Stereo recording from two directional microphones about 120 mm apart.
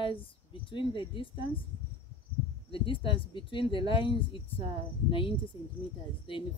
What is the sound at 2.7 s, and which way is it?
A woman's voice, 45° left (ahead or behind).